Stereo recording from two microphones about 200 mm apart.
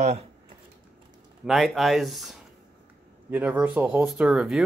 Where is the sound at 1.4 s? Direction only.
Centre (ahead or behind).